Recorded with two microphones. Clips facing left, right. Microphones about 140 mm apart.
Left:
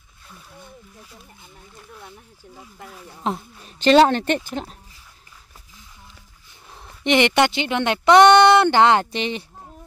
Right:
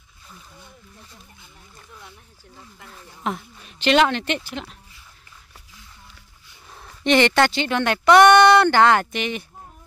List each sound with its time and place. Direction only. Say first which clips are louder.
3.3 s a woman's voice: left 2 dB; 30° left (ahead or behind)
6.7 s speech: right 1 dB; 15° left (ahead or behind)